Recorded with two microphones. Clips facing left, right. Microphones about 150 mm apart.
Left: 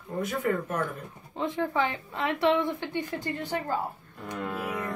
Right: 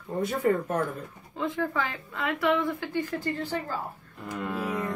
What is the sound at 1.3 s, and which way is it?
A woman's voice, 20° left (ahead or behind).